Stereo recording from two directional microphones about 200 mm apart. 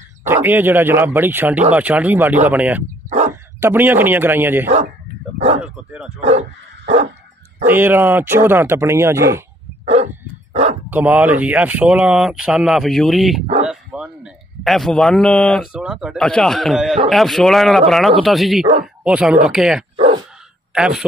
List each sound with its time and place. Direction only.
0.2 s speech: 10° right (ahead or behind)
3.1 s dog: 35° right (ahead or behind)
3.6 s speech: 10° right (ahead or behind)
4.6 s speech: 40° right (ahead or behind)
7.6 s speech: 10° right (ahead or behind)
10.5 s dog: 35° right (ahead or behind)
10.9 s a man's voice: 10° right (ahead or behind)